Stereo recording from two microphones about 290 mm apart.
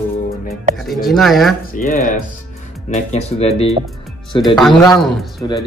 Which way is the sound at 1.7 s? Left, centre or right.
Left.